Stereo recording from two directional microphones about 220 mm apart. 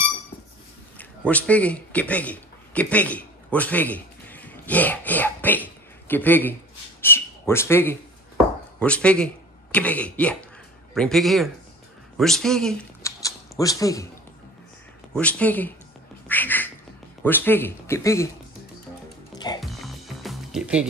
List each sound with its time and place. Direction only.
0.9 s a man's voice: 5° left (ahead or behind)
13.0 s a sound: 15° left (ahead or behind)
15.1 s speech: 5° left (ahead or behind)
16.3 s a sound: 10° left (ahead or behind)
17.2 s speech: 10° left (ahead or behind)
19.3 s music: 20° left (ahead or behind)
19.6 s music: centre (ahead or behind)